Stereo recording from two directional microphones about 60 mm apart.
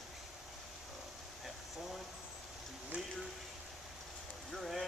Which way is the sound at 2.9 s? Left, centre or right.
Centre.